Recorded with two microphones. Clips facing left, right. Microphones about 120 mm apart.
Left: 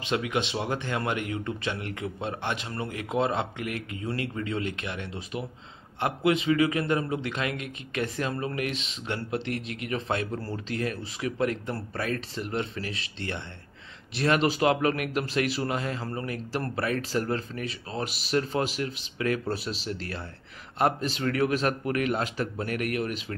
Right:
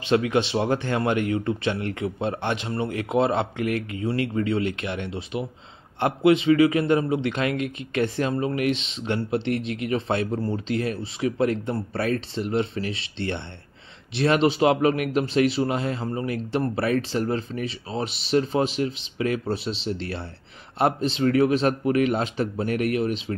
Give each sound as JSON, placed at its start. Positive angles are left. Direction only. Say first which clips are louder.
{"t": 0.0, "sound": "speech", "louder": "right 7 dB", "side_deg": -30}
{"t": 3.6, "sound": "speech", "louder": "right 8 dB", "side_deg": 25}
{"t": 4.4, "sound": "speech", "louder": "right 7 dB", "side_deg": -30}